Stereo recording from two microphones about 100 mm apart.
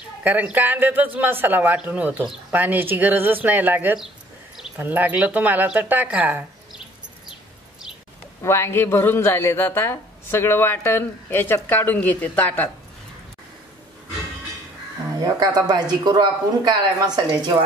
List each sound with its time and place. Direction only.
0.2 s speech: 15° right (ahead or behind)
8.4 s speech: 25° left (ahead or behind)
15.1 s speech: 40° right (ahead or behind)